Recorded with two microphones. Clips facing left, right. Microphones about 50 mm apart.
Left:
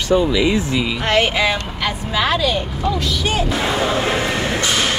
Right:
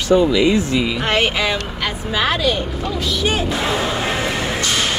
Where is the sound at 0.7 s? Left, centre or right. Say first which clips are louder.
Left 1 dB; centre.